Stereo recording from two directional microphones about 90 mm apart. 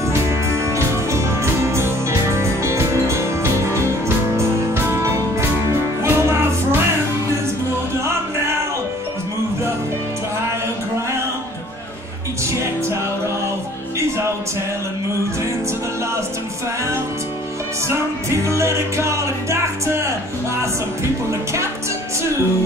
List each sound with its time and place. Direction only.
0.5 s music: 30° right (ahead or behind)
17.8 s music: 30° right (ahead or behind)